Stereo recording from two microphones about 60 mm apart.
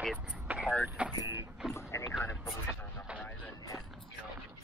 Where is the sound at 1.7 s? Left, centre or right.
Left.